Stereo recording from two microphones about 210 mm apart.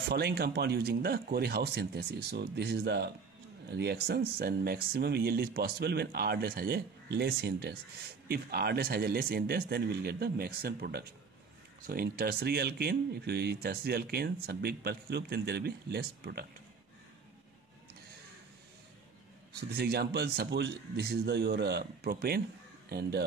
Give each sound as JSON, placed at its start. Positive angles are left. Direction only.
{"t": 0.1, "sound": "speech", "side_deg": -50}
{"t": 19.5, "sound": "speech", "side_deg": -50}